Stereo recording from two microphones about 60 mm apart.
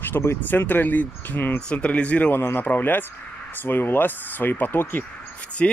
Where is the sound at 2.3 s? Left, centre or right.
Left.